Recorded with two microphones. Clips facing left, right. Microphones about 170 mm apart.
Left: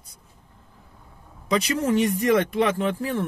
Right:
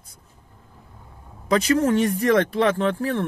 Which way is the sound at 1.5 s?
35° right (ahead or behind).